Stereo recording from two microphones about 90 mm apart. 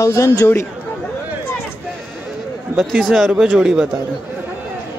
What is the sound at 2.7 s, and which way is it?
Speech, centre (ahead or behind).